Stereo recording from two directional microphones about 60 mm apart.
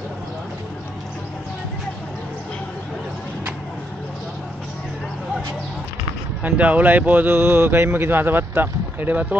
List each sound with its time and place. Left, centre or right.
6.4 s speech: right